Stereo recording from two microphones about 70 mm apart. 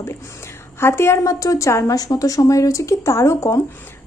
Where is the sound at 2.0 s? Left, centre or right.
Left.